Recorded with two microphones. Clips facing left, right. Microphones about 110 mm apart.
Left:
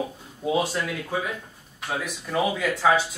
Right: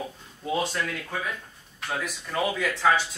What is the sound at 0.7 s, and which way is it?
Speech, 15° left (ahead or behind).